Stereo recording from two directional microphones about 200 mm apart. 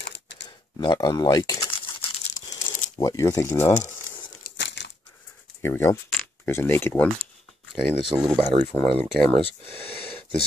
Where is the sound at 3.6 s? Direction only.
35° left (ahead or behind).